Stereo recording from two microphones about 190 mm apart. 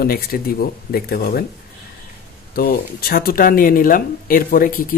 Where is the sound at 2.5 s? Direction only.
50° left (ahead or behind).